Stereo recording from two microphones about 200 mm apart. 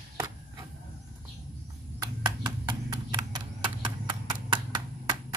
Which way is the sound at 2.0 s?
20° right (ahead or behind).